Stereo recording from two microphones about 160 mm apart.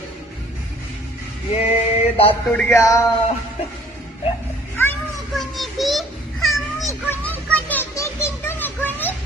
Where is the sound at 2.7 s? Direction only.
20° left (ahead or behind).